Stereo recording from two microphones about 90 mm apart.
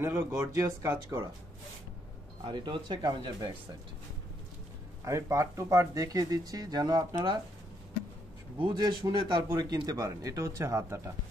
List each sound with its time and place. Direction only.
0.0 s speech: 30° right (ahead or behind)
2.4 s speech: 60° right (ahead or behind)
5.0 s speech: 35° right (ahead or behind)
8.5 s speech: 55° right (ahead or behind)
9.4 s speech: 45° right (ahead or behind)